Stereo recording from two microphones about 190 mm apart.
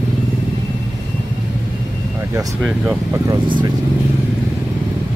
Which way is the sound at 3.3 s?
20° right (ahead or behind).